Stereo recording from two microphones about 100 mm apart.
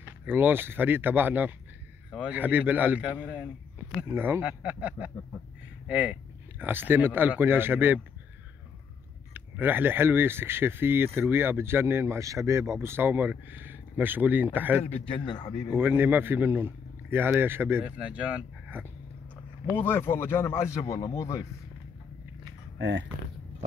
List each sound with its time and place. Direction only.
0.3 s a man's voice: 20° right (ahead or behind)
9.3 s speech: 20° right (ahead or behind)
15.0 s a man's voice: 60° left (ahead or behind); by 15.7 s 45° left (ahead or behind)
15.7 s speech: 20° right (ahead or behind)
17.9 s speech: 10° right (ahead or behind)
19.8 s speech: 25° left (ahead or behind)